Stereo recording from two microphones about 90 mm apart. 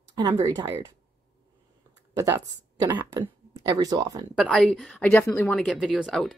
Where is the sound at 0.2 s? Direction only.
45° right (ahead or behind).